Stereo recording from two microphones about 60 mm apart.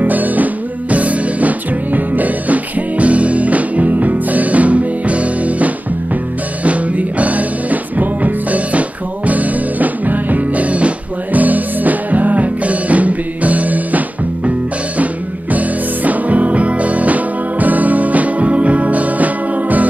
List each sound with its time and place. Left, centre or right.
0.0 s music: right
15.5 s music: right